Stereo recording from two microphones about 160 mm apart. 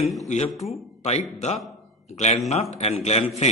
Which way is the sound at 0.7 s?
40° left (ahead or behind).